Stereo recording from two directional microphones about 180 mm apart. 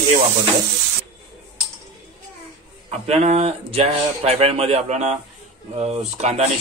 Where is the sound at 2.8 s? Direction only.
35° right (ahead or behind).